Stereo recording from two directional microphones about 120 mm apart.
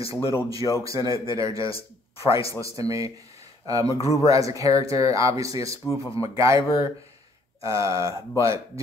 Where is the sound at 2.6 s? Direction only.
30° right (ahead or behind).